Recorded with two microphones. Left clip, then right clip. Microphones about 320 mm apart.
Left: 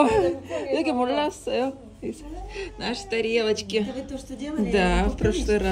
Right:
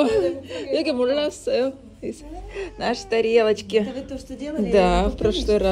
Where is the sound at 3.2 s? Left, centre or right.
Centre.